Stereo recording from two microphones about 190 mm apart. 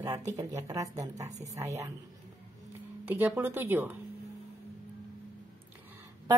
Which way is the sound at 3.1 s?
10° right (ahead or behind).